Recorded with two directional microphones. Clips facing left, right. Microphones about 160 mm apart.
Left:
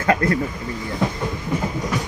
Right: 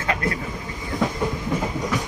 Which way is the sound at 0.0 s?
45° left (ahead or behind).